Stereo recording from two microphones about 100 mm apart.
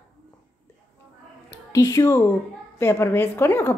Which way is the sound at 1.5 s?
30° left (ahead or behind).